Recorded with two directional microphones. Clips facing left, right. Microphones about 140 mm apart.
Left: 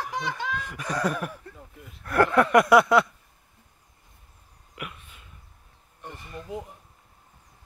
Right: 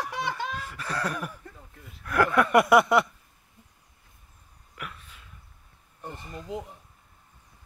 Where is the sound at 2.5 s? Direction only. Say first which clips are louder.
Left 1 dB; 5° right (ahead or behind).